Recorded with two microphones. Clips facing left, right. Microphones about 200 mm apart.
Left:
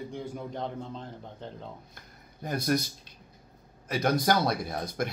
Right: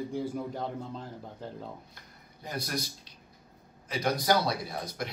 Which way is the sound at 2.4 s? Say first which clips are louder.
Left 7 dB; 50° left (ahead or behind).